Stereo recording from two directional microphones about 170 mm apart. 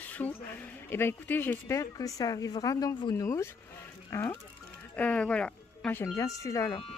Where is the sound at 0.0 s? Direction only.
10° left (ahead or behind).